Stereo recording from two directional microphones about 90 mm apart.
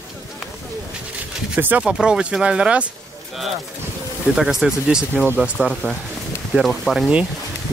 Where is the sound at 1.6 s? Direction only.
15° right (ahead or behind).